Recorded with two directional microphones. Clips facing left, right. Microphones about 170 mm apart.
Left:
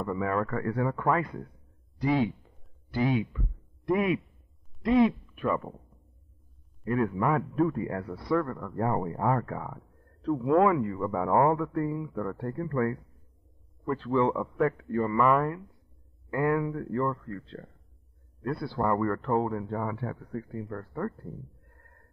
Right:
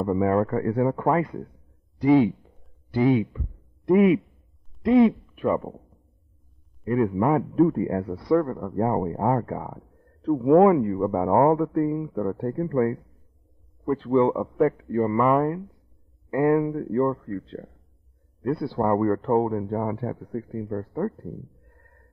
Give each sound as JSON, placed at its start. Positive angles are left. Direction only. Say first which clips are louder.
{"t": 0.0, "sound": "speech", "louder": "right 7 dB", "side_deg": -25}
{"t": 6.8, "sound": "speech", "louder": "right 5 dB", "side_deg": -25}
{"t": 20.2, "sound": "speech", "louder": "right 5 dB", "side_deg": -35}